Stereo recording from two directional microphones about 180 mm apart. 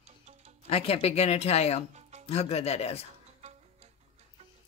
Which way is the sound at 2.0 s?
40° right (ahead or behind).